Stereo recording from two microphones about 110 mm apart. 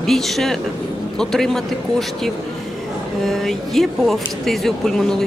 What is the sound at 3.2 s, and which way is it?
Speech, 5° left (ahead or behind).